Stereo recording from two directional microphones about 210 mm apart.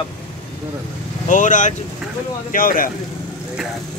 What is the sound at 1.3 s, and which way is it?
Speech, 40° left (ahead or behind).